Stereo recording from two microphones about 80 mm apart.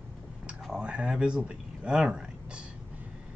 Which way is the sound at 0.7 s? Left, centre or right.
Centre.